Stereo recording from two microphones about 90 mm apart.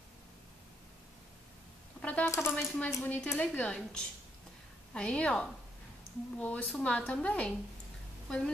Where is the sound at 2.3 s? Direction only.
30° left (ahead or behind).